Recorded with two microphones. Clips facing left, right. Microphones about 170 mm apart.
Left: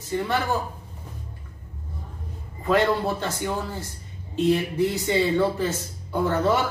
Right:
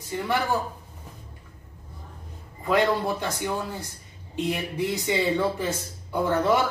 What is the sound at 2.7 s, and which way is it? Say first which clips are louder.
A man's voice: left 1 dB; 15° right (ahead or behind).